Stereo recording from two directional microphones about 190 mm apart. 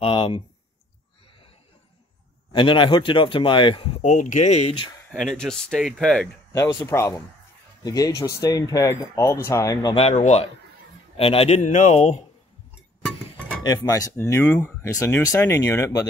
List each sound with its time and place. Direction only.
0.0 s speech: 25° left (ahead or behind)
2.5 s speech: 25° left (ahead or behind)
5.1 s speech: centre (ahead or behind)
6.5 s speech: 15° left (ahead or behind)
9.9 s speech: 35° left (ahead or behind)
13.6 s speech: 20° left (ahead or behind)